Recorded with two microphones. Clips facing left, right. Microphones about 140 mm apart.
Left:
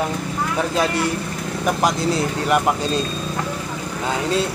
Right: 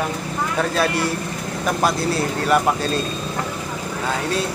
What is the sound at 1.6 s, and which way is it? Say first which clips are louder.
Speech: left 1 dB; 15° left (ahead or behind).